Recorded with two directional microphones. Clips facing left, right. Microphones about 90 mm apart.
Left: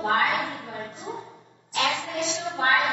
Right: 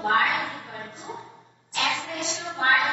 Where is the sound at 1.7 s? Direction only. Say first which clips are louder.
Left 2 dB; 35° left (ahead or behind).